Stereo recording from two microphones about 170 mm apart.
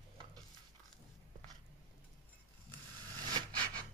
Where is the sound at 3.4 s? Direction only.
30° right (ahead or behind).